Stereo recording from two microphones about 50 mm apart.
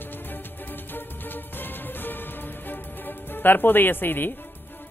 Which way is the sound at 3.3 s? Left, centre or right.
Left.